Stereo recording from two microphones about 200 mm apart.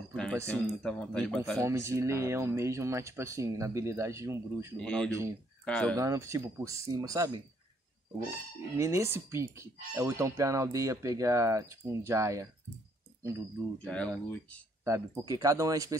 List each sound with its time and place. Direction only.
0.1 s speech: 5° left (ahead or behind)
1.6 s speech: 15° right (ahead or behind)
4.7 s speech: 5° left (ahead or behind)
5.9 s speech: 15° right (ahead or behind)
8.7 s speech: 15° right (ahead or behind)
13.8 s speech: 5° left (ahead or behind)
14.9 s speech: 15° right (ahead or behind)